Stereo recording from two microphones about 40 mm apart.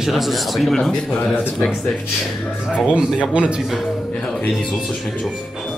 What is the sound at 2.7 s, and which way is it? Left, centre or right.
Speech, right.